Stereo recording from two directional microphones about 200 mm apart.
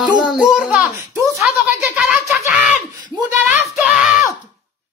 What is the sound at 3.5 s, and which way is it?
Speech, centre (ahead or behind).